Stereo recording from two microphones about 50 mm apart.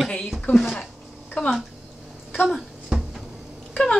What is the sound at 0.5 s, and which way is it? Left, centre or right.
Speech, centre.